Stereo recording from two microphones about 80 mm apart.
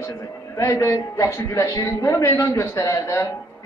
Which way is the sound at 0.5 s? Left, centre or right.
Left.